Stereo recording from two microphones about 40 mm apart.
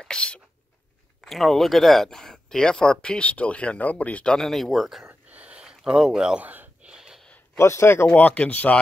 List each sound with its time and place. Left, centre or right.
0.0 s a sound: left
1.2 s speech: centre
2.0 s speech: centre
3.2 s speech: left
4.4 s speech: centre
5.3 s a sound: right
5.6 s speech: right
6.4 s speech: right
7.8 s speech: left
8.4 s speech: left